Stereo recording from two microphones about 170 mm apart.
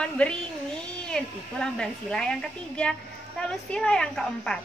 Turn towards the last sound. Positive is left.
turn(degrees=5)  # may be behind; listen again after turning